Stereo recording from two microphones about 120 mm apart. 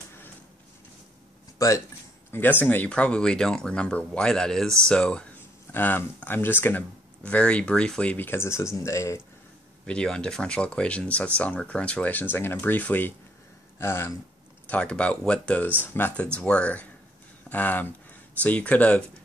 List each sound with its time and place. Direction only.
1.6 s speech: 25° left (ahead or behind)
2.3 s speech: 15° left (ahead or behind)
5.7 s speech: 15° left (ahead or behind)
9.8 s speech: 10° left (ahead or behind)
14.7 s speech: 10° left (ahead or behind)